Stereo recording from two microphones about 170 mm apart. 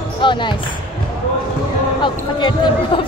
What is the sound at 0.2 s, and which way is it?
Speech, 30° left (ahead or behind).